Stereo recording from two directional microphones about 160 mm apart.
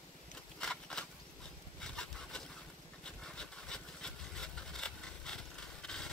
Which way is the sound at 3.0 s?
5° left (ahead or behind).